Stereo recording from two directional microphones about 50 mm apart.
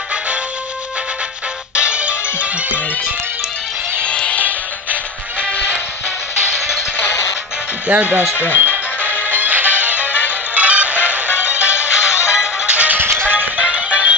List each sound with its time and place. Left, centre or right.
1.8 s music: right
4.0 s music: left
7.9 s speech: right
8.5 s music: right
12.9 s music: right
13.3 s music: right